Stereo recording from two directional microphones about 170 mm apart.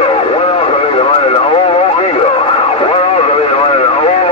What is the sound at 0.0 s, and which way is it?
Radio, 35° left (ahead or behind).